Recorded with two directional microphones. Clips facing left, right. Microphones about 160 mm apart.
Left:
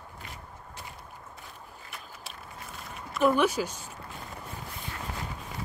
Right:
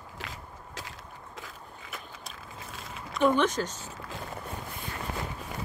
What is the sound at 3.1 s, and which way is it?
Speech, 5° left (ahead or behind).